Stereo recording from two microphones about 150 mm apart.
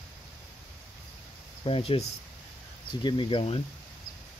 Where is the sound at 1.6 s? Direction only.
40° left (ahead or behind).